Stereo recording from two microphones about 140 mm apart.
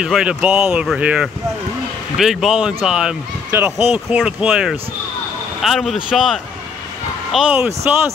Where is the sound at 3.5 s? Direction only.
15° right (ahead or behind).